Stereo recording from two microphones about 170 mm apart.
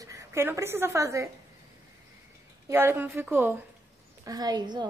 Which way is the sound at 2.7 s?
15° right (ahead or behind).